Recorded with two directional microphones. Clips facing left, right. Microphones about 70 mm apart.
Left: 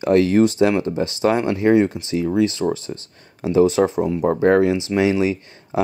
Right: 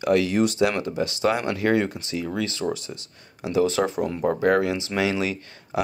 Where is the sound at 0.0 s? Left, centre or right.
Left.